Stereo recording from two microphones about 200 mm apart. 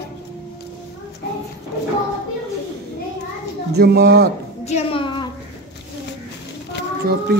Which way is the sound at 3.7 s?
55° right (ahead or behind).